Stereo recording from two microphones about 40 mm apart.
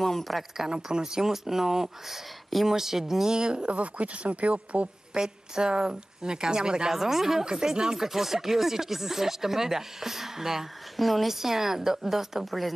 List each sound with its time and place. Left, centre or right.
0.0 s speech: centre
0.7 s speech: centre
3.3 s a woman's voice: right
3.7 s speech: right
5.1 s a woman's voice: centre
6.9 s speech: centre